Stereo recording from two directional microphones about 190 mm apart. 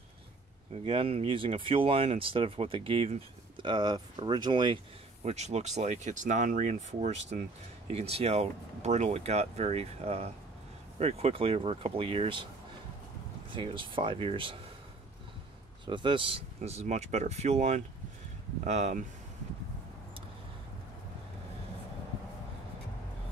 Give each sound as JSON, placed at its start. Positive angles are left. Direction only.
{"t": 0.8, "sound": "speech", "side_deg": -30}
{"t": 5.2, "sound": "speech", "side_deg": -35}
{"t": 13.5, "sound": "speech", "side_deg": -25}
{"t": 15.8, "sound": "speech", "side_deg": -25}